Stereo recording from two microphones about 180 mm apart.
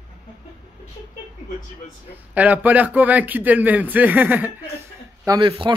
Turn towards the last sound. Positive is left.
turn(degrees=-25)  # may be behind; listen again after turning